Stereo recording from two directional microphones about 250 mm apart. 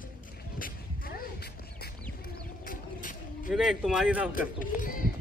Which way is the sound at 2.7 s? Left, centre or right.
Left.